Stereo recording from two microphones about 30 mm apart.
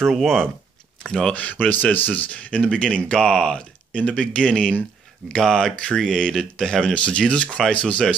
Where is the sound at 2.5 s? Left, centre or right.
Left.